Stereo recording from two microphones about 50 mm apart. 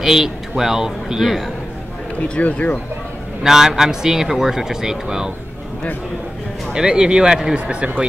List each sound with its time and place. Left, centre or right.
0.0 s a man's voice: centre
2.2 s speech: left
3.4 s a man's voice: centre
6.7 s a man's voice: centre
7.5 s speech: right